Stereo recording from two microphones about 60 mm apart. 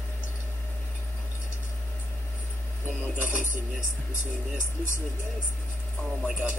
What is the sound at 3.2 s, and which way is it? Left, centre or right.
Music, left.